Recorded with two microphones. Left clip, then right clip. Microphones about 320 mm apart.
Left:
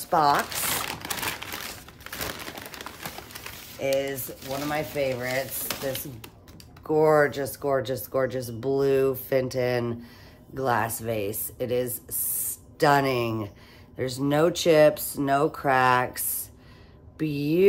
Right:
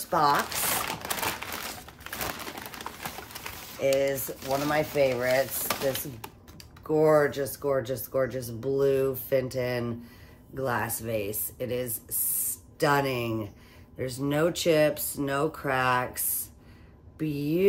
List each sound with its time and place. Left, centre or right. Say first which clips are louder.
0.1 s crumpling: left 2 dB; centre
2.0 s a sound: even; centre
3.8 s speech: right 1 dB; centre
5.7 s speech: right 2 dB; centre
6.9 s speech: left 2 dB; centre
17.2 s speech: left 4 dB; centre